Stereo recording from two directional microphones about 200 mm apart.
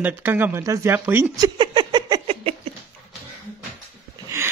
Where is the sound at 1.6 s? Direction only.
20° right (ahead or behind).